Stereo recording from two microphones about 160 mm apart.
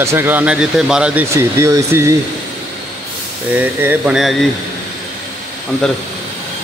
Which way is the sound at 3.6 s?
10° right (ahead or behind).